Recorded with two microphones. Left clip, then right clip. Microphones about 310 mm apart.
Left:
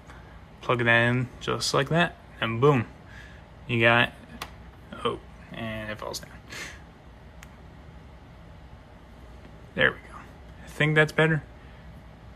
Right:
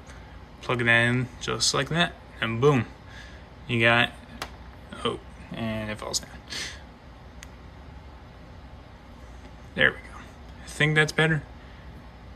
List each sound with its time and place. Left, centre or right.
0.6 s speech: centre
4.9 s a sound: centre
5.6 s speech: right
5.9 s speech: centre
9.8 s a sound: centre
10.8 s speech: centre